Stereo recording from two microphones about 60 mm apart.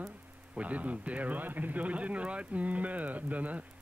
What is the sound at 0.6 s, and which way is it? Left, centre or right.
Speech, right.